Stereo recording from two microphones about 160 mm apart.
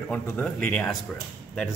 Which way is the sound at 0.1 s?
10° left (ahead or behind).